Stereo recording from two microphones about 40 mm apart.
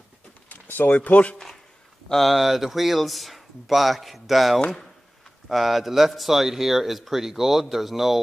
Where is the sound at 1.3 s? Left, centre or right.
Centre.